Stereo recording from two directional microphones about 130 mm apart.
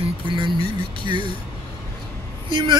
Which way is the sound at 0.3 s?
40° right (ahead or behind).